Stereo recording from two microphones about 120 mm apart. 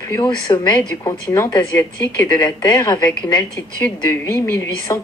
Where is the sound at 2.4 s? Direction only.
30° left (ahead or behind).